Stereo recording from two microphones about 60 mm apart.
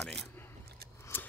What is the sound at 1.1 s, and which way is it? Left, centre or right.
Scissors, left.